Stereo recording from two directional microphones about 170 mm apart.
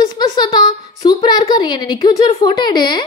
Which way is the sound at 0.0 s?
25° left (ahead or behind).